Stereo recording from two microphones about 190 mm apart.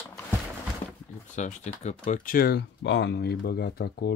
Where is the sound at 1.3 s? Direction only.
40° left (ahead or behind).